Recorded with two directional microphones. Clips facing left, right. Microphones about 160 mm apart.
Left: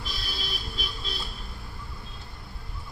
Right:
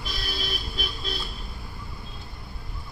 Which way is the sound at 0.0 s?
65° right (ahead or behind).